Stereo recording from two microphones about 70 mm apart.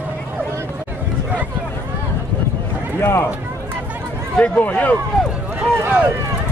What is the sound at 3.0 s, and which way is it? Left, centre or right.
Speech, left.